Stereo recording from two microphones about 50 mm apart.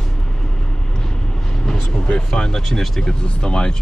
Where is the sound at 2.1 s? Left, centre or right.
Centre.